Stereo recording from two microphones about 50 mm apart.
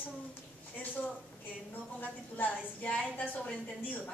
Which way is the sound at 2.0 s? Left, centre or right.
Left.